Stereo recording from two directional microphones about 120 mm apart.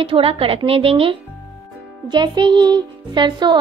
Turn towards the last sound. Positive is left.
turn(degrees=-40)  # may be behind; listen again after turning